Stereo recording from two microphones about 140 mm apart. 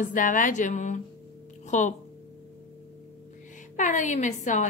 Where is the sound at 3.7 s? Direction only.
65° left (ahead or behind).